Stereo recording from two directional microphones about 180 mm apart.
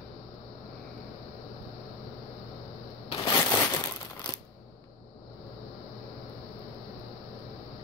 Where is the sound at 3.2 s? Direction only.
20° left (ahead or behind).